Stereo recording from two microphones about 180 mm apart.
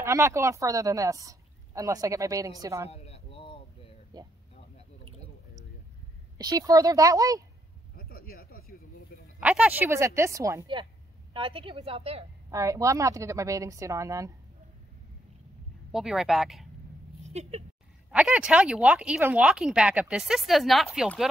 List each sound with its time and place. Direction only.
0.0 s a woman's voice: 15° right (ahead or behind)
2.9 s a sound: 35° left (ahead or behind)
4.1 s speech: 25° right (ahead or behind)
6.3 s a woman's voice: 20° right (ahead or behind)
7.9 s a sound: 55° left (ahead or behind)
9.4 s a woman's voice: 10° right (ahead or behind)
11.3 s a woman's voice: 30° right (ahead or behind)
12.4 s a woman's voice: 20° right (ahead or behind)
15.9 s speech: centre (ahead or behind)
17.3 s speech: 35° right (ahead or behind)
18.1 s speech: 5° right (ahead or behind)